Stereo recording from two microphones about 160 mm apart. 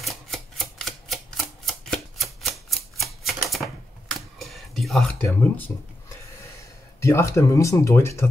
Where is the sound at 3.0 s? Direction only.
Centre (ahead or behind).